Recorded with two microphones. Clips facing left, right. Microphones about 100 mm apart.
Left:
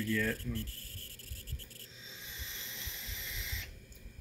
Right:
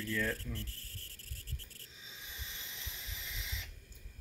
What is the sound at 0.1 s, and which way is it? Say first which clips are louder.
Speech: left 1 dB; 20° right (ahead or behind).